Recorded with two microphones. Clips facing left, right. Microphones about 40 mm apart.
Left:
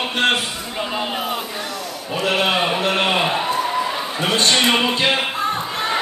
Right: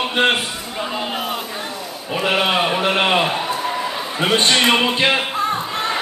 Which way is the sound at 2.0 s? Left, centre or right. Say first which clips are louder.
Right 1 dB; centre.